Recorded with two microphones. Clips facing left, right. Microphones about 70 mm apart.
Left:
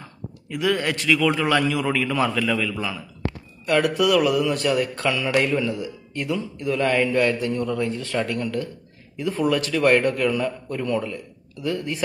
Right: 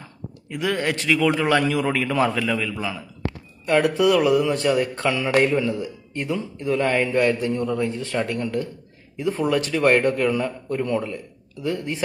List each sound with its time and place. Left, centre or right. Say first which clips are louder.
0.5 s speech: left 1 dB; right